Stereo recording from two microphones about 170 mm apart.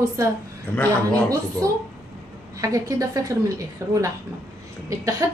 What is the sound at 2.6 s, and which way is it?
A woman's voice, 20° right (ahead or behind).